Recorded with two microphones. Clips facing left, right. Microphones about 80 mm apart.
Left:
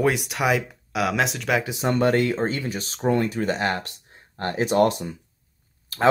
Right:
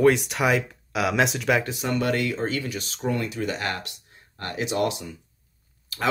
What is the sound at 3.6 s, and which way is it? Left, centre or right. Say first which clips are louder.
Speech: left 5 dB; left.